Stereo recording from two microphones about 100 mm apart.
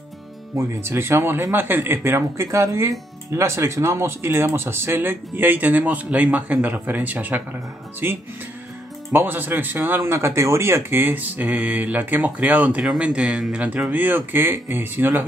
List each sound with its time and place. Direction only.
0.6 s speech: 25° right (ahead or behind)